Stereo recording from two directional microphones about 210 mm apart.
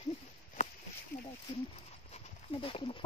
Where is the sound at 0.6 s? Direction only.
35° left (ahead or behind).